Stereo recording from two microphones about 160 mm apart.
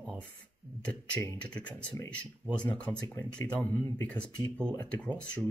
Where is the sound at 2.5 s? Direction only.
5° left (ahead or behind).